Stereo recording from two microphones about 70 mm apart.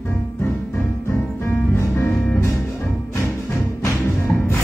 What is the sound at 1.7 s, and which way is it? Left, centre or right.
Music, left.